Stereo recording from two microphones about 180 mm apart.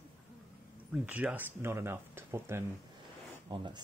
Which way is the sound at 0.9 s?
10° right (ahead or behind).